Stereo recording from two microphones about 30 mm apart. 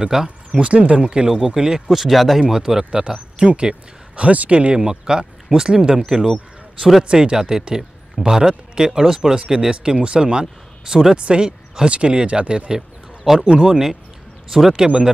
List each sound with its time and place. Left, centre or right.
0.1 s speech: centre
0.6 s speech: right
1.1 s speech: right
1.9 s speech: centre
2.5 s speech: right
4.2 s speech: right
4.7 s speech: right
7.1 s speech: right
11.1 s speech: right
12.7 s a sound: centre
13.4 s speech: right